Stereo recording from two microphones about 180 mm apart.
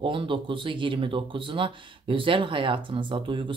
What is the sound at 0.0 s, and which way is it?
Speech, 30° right (ahead or behind).